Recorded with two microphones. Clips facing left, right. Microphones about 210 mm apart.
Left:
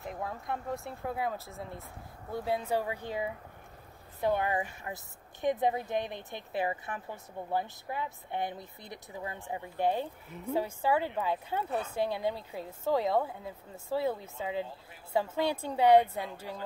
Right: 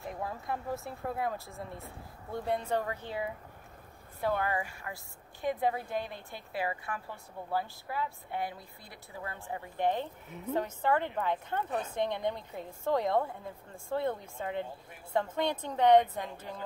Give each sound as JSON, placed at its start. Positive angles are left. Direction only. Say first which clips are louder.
{"t": 0.2, "sound": "a woman's voice", "louder": "even", "side_deg": 0}